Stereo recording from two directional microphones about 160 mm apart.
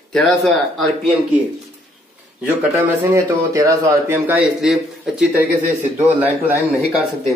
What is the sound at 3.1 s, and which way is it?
Speech, 20° right (ahead or behind).